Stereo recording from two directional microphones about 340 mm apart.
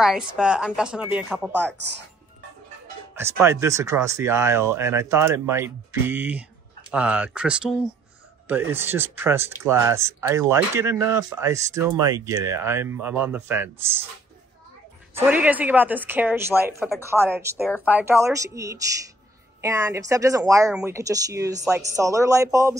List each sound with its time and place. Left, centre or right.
0.4 s a woman's voice: centre
3.2 s a woman's voice: centre
15.1 s a woman's voice: centre